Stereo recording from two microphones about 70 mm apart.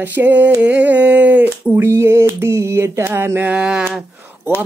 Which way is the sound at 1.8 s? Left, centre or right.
Right.